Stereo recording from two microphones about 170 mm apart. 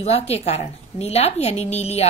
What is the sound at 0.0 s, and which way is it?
A woman's voice, 35° left (ahead or behind).